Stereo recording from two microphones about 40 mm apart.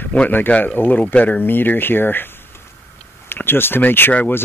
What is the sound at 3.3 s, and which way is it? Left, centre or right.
Speech, left.